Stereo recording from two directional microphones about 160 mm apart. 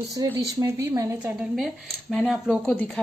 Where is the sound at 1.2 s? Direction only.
Centre (ahead or behind).